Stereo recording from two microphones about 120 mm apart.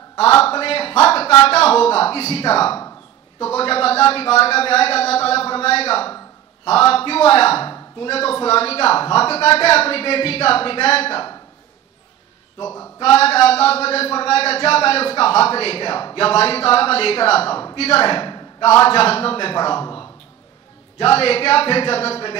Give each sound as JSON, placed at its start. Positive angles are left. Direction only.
{"t": 0.4, "sound": "speech", "side_deg": 55}
{"t": 13.0, "sound": "speech", "side_deg": 60}
{"t": 16.2, "sound": "speech", "side_deg": 55}
{"t": 18.1, "sound": "a sound", "side_deg": 40}
{"t": 18.9, "sound": "speech", "side_deg": 55}
{"t": 19.6, "sound": "speech", "side_deg": 35}
{"t": 21.0, "sound": "speech", "side_deg": 55}